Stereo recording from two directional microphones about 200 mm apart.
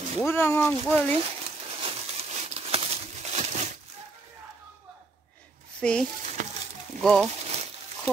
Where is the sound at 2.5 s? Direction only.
30° right (ahead or behind).